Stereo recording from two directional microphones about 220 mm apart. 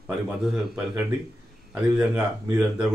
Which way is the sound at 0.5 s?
Centre (ahead or behind).